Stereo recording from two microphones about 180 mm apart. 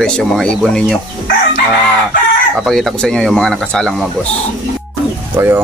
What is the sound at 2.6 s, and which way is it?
Speech, centre (ahead or behind).